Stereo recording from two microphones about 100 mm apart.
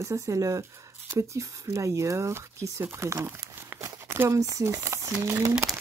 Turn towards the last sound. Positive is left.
turn(degrees=-30)  # may be behind; listen again after turning